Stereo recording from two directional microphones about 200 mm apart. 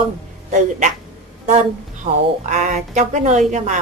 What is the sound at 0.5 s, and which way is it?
Speech, 35° right (ahead or behind).